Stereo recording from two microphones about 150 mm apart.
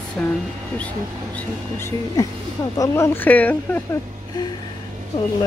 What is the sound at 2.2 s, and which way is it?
Speech, 20° left (ahead or behind).